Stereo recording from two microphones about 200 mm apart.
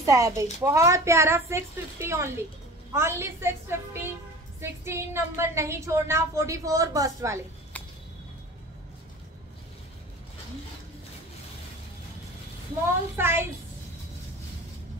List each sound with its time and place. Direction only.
0.0 s a woman's voice: 15° right (ahead or behind)
13.2 s a woman's voice: 10° right (ahead or behind)